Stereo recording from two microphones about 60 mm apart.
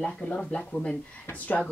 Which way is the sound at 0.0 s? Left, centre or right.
Centre.